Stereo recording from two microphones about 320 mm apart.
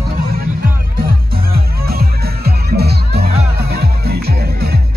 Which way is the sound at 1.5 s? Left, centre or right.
Right.